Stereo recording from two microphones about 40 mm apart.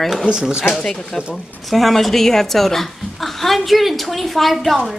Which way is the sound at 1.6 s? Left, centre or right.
Centre.